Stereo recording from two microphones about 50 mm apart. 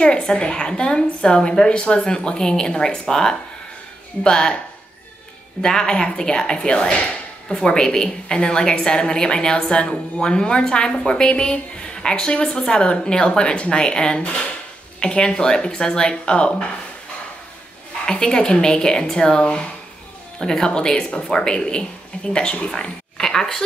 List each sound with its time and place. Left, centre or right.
0.0 s a woman's voice: centre
5.6 s a woman's voice: centre
18.0 s a woman's voice: centre